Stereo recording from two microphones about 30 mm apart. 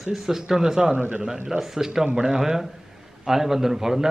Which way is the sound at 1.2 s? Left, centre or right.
Centre.